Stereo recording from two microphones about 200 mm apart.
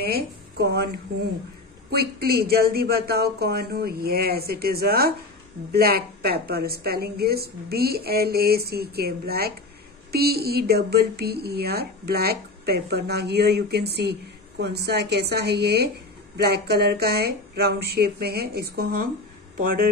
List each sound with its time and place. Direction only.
0.0 s speech: 55° right (ahead or behind)
1.9 s a woman's voice: 50° right (ahead or behind)